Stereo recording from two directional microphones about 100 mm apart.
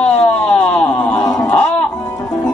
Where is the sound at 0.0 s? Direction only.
10° left (ahead or behind).